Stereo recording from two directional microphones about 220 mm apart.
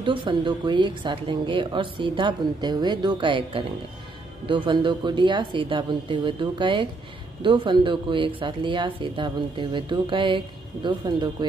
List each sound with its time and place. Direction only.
0.0 s speech: 20° right (ahead or behind)